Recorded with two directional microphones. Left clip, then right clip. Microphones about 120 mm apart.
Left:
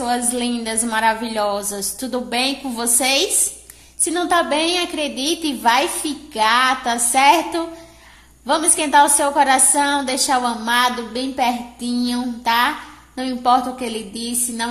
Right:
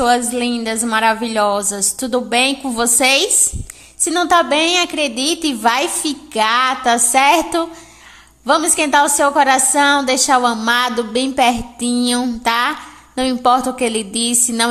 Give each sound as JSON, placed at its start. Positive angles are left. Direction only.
{"t": 0.4, "sound": "a woman's voice", "side_deg": -20}